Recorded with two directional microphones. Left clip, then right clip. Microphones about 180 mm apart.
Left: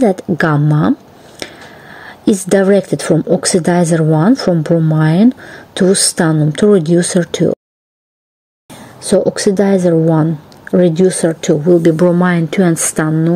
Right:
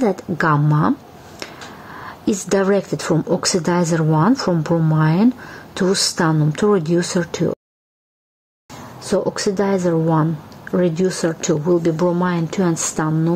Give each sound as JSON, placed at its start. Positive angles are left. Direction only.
{"t": 0.0, "sound": "speech", "side_deg": 20}
{"t": 2.0, "sound": "a woman's voice", "side_deg": 20}
{"t": 9.4, "sound": "speech", "side_deg": 20}
{"t": 11.8, "sound": "speech", "side_deg": 30}